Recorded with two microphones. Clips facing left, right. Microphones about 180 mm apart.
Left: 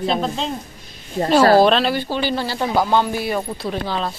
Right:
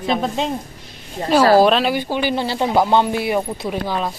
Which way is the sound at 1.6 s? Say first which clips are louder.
Even; 10° right (ahead or behind).